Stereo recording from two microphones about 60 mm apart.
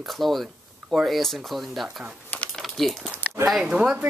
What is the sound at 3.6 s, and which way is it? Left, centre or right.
Speech, centre.